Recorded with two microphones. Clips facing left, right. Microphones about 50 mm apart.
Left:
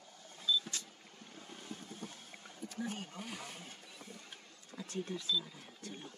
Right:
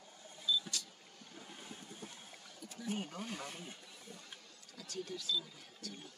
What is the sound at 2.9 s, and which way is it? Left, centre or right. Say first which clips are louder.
Speech: right 4 dB; right.